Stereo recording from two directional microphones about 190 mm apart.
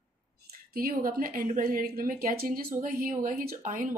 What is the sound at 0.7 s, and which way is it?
Speech, 50° right (ahead or behind).